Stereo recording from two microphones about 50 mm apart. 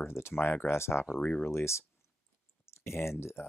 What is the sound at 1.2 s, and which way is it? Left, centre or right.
Speech, left.